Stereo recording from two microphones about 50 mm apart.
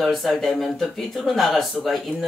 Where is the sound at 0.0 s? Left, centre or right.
Centre.